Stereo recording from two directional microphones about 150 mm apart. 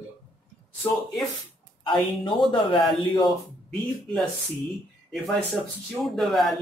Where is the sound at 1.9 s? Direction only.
35° left (ahead or behind).